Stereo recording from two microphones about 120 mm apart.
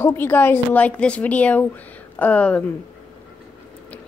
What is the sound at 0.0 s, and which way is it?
A woman's voice, 20° left (ahead or behind).